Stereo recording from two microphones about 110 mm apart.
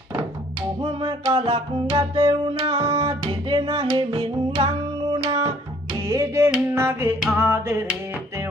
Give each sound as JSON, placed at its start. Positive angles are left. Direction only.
{"t": 0.7, "sound": "music", "side_deg": -45}
{"t": 6.0, "sound": "music", "side_deg": -25}